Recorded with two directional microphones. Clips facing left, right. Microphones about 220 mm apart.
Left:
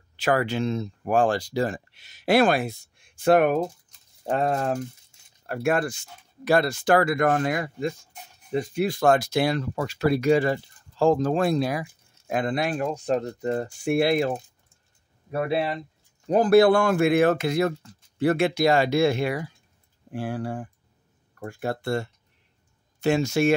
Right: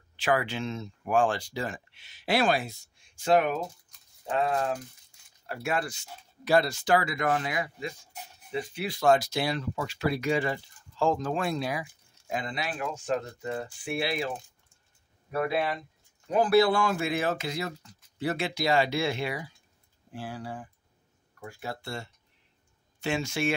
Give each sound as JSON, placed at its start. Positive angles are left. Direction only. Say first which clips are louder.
{"t": 0.1, "sound": "speech", "louder": "left 4 dB", "side_deg": 40}
{"t": 4.3, "sound": "speech", "louder": "left 4 dB", "side_deg": 45}
{"t": 11.8, "sound": "speech", "louder": "left 5 dB", "side_deg": 55}
{"t": 12.8, "sound": "speech", "louder": "left 6 dB", "side_deg": 35}
{"t": 15.3, "sound": "speech", "louder": "left 3 dB", "side_deg": 30}
{"t": 16.3, "sound": "speech", "louder": "left 6 dB", "side_deg": 45}
{"t": 22.9, "sound": "speech", "louder": "left 8 dB", "side_deg": 40}